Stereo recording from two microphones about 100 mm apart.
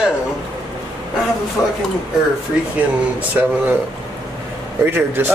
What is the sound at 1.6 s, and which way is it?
Speech, 5° right (ahead or behind).